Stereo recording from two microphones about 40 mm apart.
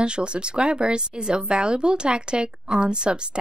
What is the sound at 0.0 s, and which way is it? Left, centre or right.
A woman's voice, right.